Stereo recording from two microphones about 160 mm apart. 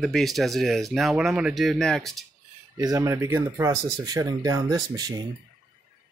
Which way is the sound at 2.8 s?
20° right (ahead or behind).